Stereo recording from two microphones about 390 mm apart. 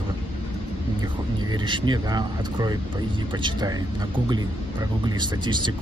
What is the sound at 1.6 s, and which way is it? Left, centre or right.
Speech, centre.